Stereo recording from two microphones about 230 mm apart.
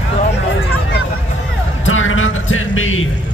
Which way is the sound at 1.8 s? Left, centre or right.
Left.